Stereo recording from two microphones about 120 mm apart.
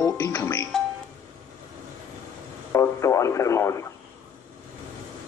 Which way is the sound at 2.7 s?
25° left (ahead or behind).